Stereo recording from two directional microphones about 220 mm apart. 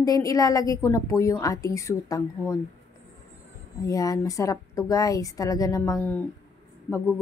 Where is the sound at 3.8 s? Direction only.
15° left (ahead or behind).